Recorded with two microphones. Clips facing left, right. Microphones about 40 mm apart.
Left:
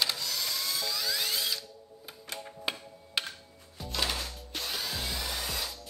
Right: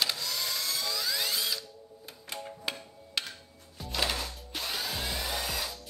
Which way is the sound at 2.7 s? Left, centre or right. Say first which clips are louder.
Left 2 dB; centre.